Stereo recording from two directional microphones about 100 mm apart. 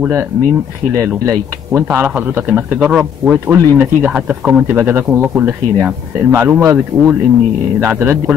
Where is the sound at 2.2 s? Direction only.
15° right (ahead or behind).